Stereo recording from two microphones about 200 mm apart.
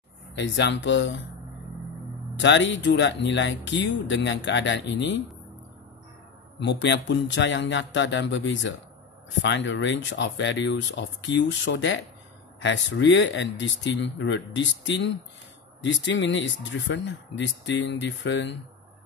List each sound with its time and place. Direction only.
0.4 s speech: 65° left (ahead or behind)
2.3 s speech: 65° left (ahead or behind)
6.6 s speech: 60° left (ahead or behind)